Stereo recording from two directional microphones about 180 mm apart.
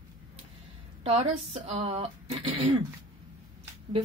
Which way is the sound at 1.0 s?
35° right (ahead or behind).